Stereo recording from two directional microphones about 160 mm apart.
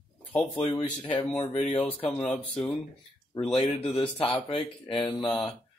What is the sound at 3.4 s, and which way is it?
Speech, 40° left (ahead or behind).